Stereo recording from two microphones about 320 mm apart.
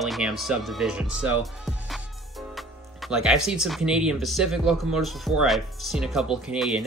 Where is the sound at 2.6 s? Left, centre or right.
Centre.